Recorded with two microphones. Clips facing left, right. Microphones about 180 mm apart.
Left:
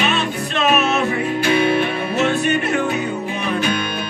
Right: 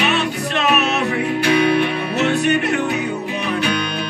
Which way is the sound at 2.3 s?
65° right (ahead or behind).